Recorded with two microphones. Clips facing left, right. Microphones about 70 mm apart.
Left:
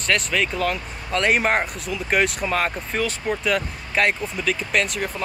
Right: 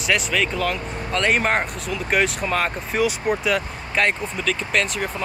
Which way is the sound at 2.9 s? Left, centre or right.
Centre.